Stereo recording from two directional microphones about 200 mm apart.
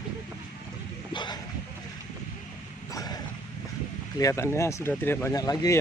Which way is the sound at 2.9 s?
20° left (ahead or behind).